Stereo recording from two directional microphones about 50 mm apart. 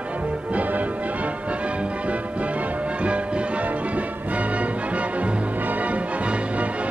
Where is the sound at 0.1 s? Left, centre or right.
Right.